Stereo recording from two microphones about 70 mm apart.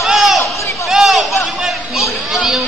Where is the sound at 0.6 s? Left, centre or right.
Left.